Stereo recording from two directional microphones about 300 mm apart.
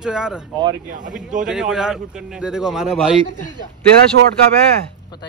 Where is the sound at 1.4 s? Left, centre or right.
Centre.